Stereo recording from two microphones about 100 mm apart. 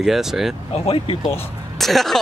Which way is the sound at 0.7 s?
75° left (ahead or behind).